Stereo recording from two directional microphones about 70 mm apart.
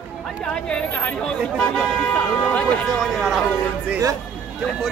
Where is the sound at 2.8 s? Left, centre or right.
Centre.